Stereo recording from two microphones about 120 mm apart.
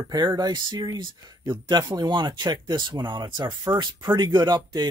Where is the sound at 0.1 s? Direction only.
35° right (ahead or behind).